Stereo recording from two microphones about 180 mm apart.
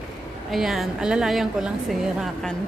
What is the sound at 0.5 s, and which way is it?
A woman's voice, centre (ahead or behind).